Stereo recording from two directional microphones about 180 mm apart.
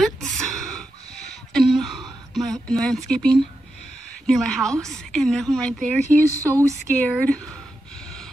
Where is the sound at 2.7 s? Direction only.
5° left (ahead or behind).